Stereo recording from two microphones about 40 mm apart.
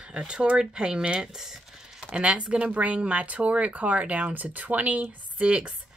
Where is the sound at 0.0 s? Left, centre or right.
Right.